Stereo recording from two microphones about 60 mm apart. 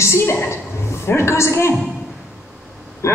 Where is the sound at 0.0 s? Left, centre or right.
Left.